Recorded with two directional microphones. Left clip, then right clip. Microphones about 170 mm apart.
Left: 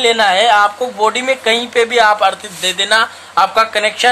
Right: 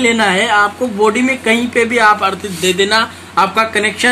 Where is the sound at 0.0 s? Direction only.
65° left (ahead or behind).